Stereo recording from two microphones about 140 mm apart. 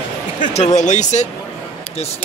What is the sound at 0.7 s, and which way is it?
Speech, 60° left (ahead or behind).